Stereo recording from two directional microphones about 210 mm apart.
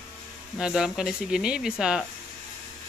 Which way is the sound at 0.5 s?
5° right (ahead or behind).